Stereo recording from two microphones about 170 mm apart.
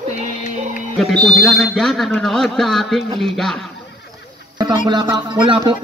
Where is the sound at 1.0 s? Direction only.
Centre (ahead or behind).